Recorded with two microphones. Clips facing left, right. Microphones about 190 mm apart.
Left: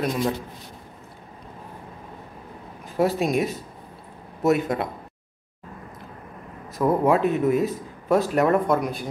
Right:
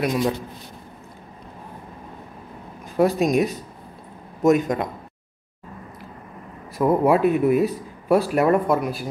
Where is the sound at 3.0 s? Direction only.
15° right (ahead or behind).